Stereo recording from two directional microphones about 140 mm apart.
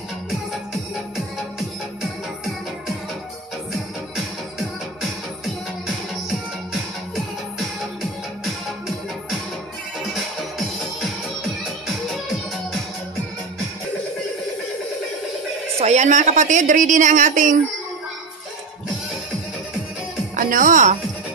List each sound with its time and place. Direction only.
15.8 s a woman's voice: 55° right (ahead or behind)
20.3 s speech: 75° right (ahead or behind)